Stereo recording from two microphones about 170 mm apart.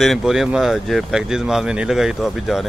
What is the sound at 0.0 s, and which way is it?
Speech, centre (ahead or behind).